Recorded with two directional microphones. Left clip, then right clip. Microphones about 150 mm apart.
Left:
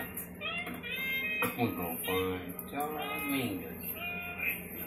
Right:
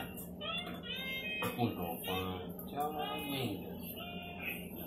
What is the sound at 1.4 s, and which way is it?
Music, 20° left (ahead or behind).